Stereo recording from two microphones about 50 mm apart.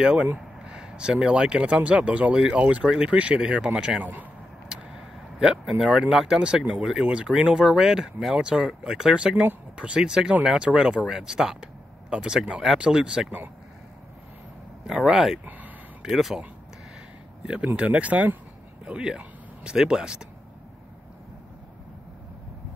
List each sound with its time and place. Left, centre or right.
0.4 s speech: centre
4.0 s a man's voice: right
4.6 s speech: centre
11.1 s speech: centre
14.9 s speech: centre
17.7 s speech: right
18.9 s speech: centre